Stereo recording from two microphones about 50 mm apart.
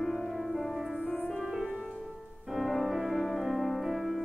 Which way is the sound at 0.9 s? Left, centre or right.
Left.